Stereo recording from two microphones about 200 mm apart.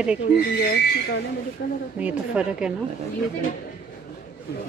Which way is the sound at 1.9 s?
5° right (ahead or behind).